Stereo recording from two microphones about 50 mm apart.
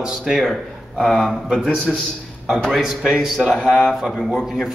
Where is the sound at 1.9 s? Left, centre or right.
Centre.